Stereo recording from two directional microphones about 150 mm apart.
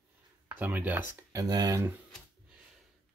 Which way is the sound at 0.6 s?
10° right (ahead or behind).